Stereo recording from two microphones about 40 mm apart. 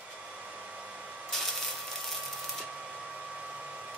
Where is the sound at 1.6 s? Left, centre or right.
Centre.